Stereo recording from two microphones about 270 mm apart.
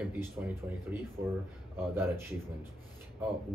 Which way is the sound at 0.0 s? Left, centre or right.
Centre.